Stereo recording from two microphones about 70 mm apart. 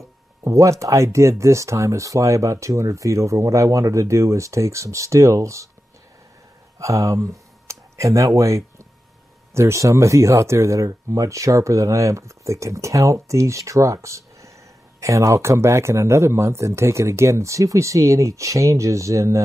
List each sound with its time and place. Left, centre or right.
0.4 s speech: right
6.8 s speech: right